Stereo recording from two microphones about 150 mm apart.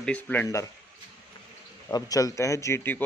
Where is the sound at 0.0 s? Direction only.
10° left (ahead or behind).